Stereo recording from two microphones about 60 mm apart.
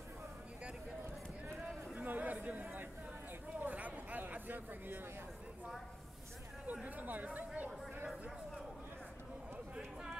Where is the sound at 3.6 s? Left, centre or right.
Right.